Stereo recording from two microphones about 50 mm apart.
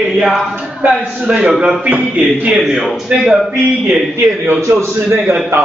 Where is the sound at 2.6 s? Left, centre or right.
Centre.